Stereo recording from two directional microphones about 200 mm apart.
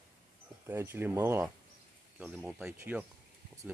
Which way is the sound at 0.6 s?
10° right (ahead or behind).